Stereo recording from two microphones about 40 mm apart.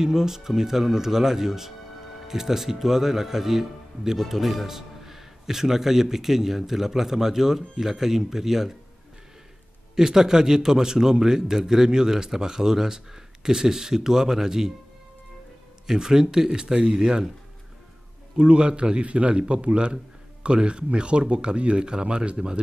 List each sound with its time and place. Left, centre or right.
0.0 s speech: centre
9.9 s speech: centre
15.9 s speech: centre
18.4 s speech: right